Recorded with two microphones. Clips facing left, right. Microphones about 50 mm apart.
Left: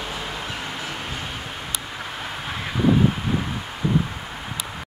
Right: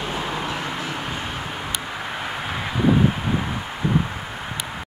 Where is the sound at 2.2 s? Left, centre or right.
Centre.